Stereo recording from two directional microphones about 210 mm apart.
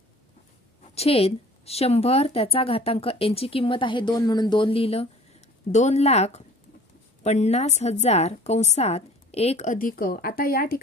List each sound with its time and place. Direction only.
0.9 s a woman's voice: 30° left (ahead or behind); by 10.8 s 45° left (ahead or behind)